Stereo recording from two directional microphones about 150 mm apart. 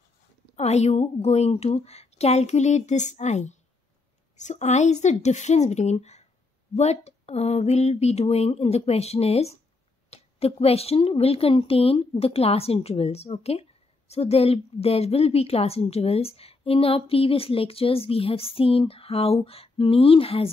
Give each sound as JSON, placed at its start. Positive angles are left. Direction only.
{"t": 0.6, "sound": "a woman's voice", "side_deg": 45}